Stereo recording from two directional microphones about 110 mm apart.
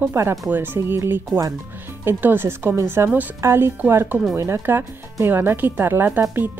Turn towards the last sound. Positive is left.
turn(degrees=-20)  # may be behind; listen again after turning